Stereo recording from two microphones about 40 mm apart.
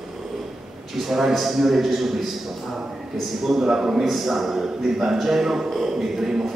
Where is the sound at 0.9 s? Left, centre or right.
Centre.